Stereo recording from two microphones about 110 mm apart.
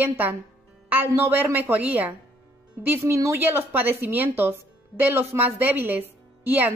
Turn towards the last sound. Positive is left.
turn(degrees=-15)  # may be behind; listen again after turning